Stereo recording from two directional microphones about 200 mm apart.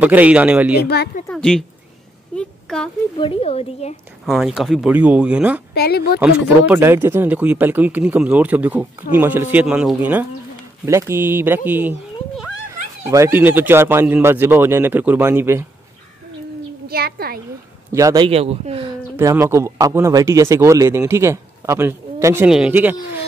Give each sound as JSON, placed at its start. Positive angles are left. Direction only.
{"t": 0.0, "sound": "speech", "side_deg": -5}
{"t": 0.8, "sound": "speech", "side_deg": 55}
{"t": 1.2, "sound": "a woman's voice", "side_deg": 5}
{"t": 2.3, "sound": "a sound", "side_deg": 5}
{"t": 3.2, "sound": "speech", "side_deg": 30}
{"t": 4.3, "sound": "speech", "side_deg": 0}
{"t": 5.8, "sound": "speech", "side_deg": 55}
{"t": 6.2, "sound": "speech", "side_deg": -10}
{"t": 13.0, "sound": "speech", "side_deg": -15}
{"t": 16.8, "sound": "a woman's voice", "side_deg": -50}
{"t": 17.9, "sound": "speech", "side_deg": -20}
{"t": 19.1, "sound": "speech", "side_deg": -15}